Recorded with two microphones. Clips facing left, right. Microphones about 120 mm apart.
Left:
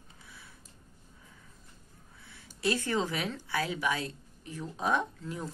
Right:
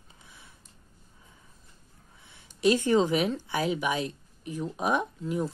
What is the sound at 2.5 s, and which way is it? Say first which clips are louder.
Speech: right 8 dB; 20° right (ahead or behind).